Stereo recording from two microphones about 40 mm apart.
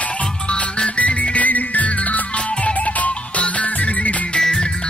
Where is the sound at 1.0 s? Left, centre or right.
Left.